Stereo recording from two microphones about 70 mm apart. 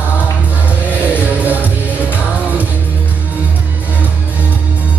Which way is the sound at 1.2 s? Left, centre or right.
Right.